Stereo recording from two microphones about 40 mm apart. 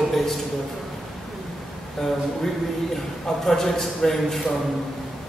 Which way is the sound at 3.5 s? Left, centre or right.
Centre.